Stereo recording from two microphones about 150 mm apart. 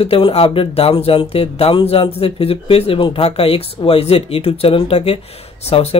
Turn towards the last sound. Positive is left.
turn(degrees=40)  # may be behind; listen again after turning